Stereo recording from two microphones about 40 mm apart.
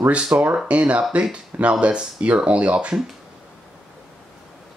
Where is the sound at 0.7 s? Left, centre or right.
Right.